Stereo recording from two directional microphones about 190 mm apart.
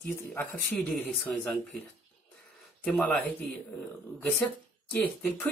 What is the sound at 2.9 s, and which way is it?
Speech, 10° left (ahead or behind).